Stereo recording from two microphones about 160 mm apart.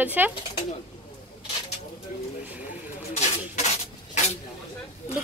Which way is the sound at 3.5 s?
45° left (ahead or behind).